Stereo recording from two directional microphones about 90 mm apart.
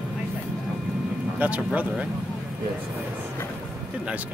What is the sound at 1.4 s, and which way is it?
Speech, 15° right (ahead or behind).